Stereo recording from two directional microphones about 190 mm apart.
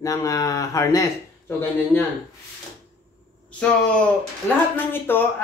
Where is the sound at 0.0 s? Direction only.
15° left (ahead or behind).